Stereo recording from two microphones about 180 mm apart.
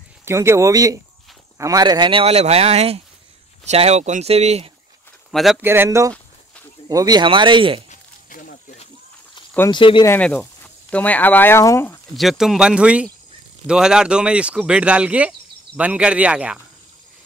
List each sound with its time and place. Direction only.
0.2 s speech: 15° right (ahead or behind); by 4.6 s 35° right (ahead or behind)
5.3 s speech: centre (ahead or behind)
5.6 s speech: 10° right (ahead or behind); by 7.8 s 30° right (ahead or behind)
7.9 s snake: 50° left (ahead or behind)
9.7 s speech: 25° left (ahead or behind)
10.0 s speech: 10° left (ahead or behind)
12.2 s speech: centre (ahead or behind)